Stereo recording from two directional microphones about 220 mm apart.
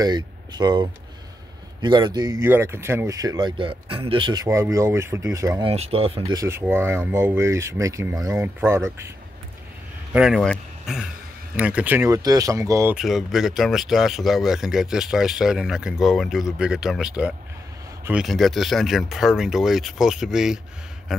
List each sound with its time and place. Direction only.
0.0 s a man's voice: 20° right (ahead or behind)
5.7 s speech: 25° right (ahead or behind)
10.1 s speech: centre (ahead or behind)
12.9 s speech: centre (ahead or behind)
21.1 s a sound: centre (ahead or behind)